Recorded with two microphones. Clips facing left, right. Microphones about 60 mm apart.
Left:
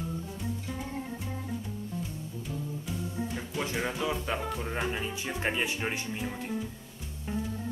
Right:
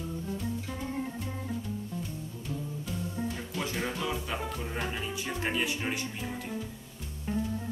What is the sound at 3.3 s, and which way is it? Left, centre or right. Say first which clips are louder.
Music: left 1 dB; centre.